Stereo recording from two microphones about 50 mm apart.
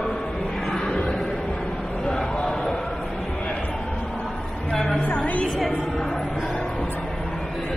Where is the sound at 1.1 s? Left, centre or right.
Left.